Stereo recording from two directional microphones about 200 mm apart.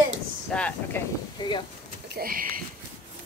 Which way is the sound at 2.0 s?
50° right (ahead or behind).